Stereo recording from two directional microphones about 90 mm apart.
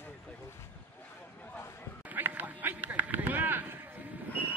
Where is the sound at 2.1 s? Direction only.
20° right (ahead or behind).